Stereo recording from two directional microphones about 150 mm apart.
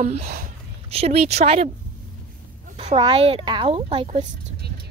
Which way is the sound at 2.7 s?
35° right (ahead or behind).